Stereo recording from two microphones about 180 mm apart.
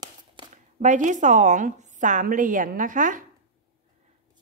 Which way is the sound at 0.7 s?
45° right (ahead or behind).